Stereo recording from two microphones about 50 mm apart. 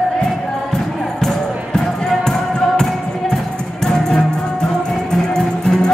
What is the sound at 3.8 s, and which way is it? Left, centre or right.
Music, centre.